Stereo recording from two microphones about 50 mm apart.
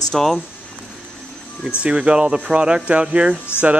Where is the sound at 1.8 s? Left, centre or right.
Right.